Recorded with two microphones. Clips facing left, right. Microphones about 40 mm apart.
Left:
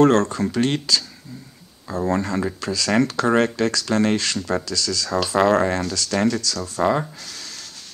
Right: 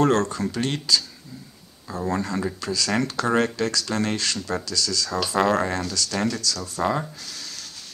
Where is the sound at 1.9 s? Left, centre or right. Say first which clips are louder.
Left 4 dB; left.